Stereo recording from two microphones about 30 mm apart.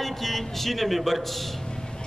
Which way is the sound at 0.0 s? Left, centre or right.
Centre.